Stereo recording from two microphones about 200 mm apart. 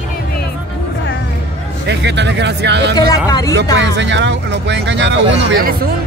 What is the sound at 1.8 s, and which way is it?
Speech, 60° right (ahead or behind).